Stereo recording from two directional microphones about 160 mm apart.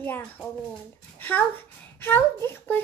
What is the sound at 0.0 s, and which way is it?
Speech, 10° left (ahead or behind).